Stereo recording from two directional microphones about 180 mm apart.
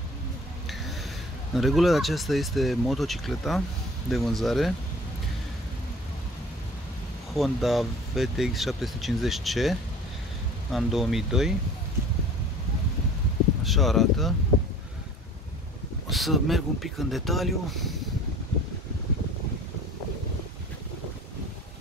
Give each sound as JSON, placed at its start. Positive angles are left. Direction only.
{"t": 1.5, "sound": "speech", "side_deg": 0}
{"t": 7.3, "sound": "speech", "side_deg": 0}
{"t": 13.7, "sound": "speech", "side_deg": 0}
{"t": 16.1, "sound": "speech", "side_deg": 0}